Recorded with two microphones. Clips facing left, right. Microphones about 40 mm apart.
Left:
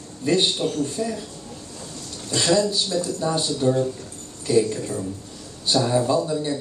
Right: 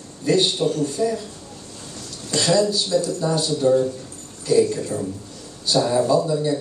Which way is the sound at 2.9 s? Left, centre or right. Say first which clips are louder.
Right 5 dB; centre.